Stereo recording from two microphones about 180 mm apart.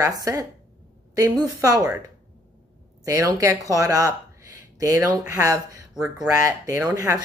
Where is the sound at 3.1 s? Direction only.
15° right (ahead or behind).